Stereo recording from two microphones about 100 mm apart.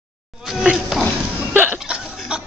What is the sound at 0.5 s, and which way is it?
Insect, 5° right (ahead or behind).